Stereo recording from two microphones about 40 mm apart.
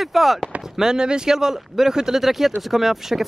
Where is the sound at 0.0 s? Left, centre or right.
Centre.